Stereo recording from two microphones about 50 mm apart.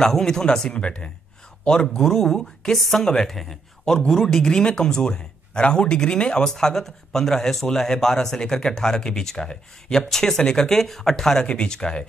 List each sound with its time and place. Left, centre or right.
0.0 s speech: centre
11.4 s speech: centre